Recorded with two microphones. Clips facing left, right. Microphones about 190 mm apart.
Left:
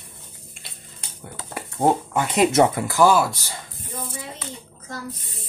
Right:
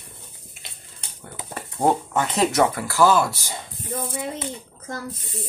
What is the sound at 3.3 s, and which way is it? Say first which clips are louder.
Speech: right 2 dB; 15° right (ahead or behind).